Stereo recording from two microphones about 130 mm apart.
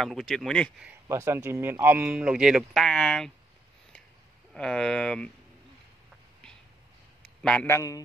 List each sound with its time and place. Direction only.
0.0 s speech: 5° left (ahead or behind)
1.0 s speech: 20° right (ahead or behind); by 3.3 s 5° left (ahead or behind)
4.6 s speech: 5° left (ahead or behind)
7.6 s a man's voice: 20° left (ahead or behind)